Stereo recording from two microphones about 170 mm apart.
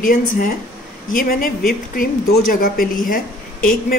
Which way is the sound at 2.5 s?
55° left (ahead or behind).